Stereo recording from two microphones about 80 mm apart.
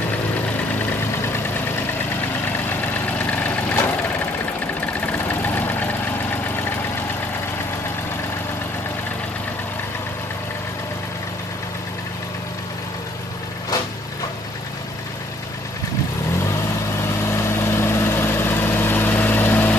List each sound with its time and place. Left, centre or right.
3.3 s vehicle: centre
4.7 s vehicle: left
17.3 s vehicle: left